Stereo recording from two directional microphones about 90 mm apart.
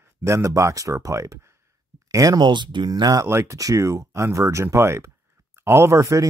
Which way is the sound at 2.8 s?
50° right (ahead or behind).